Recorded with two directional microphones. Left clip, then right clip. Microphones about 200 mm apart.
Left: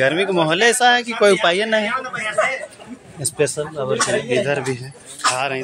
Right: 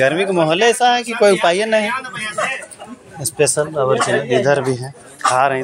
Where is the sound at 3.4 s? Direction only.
15° right (ahead or behind).